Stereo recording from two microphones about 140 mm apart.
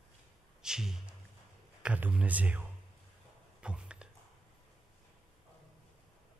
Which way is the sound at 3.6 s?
5° right (ahead or behind).